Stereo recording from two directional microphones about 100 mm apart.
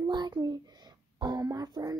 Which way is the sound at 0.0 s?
45° right (ahead or behind).